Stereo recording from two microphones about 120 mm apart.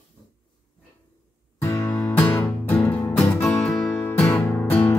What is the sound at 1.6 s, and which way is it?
Music, 25° left (ahead or behind).